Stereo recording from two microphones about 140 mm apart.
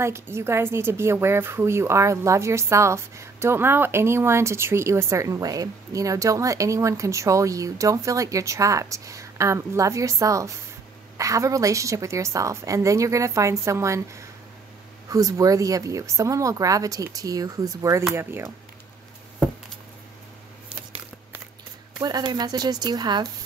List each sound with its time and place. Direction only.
0.0 s a woman's voice: 20° right (ahead or behind)
15.0 s a woman's voice: 25° right (ahead or behind)
22.0 s a woman's voice: 30° right (ahead or behind)